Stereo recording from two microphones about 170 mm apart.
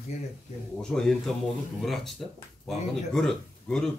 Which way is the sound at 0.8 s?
5° left (ahead or behind).